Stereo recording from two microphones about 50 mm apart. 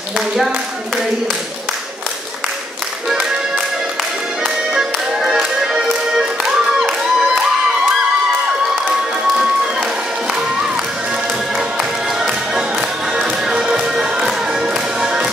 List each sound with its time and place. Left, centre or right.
4.7 s music: centre
9.3 s run: centre
12.2 s music: centre